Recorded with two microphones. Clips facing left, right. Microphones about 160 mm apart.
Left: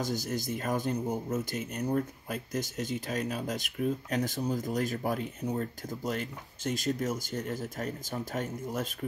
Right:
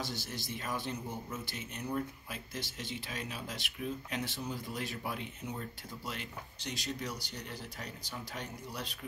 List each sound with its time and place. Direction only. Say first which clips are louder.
0.0 s speech: left 8 dB; 45° left (ahead or behind)